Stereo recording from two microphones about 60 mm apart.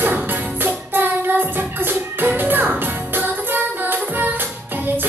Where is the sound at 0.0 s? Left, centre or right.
Right.